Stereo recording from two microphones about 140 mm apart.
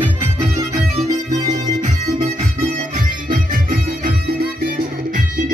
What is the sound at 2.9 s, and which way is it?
Music, 75° right (ahead or behind).